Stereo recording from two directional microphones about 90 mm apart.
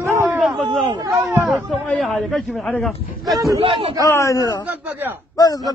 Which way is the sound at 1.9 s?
10° left (ahead or behind).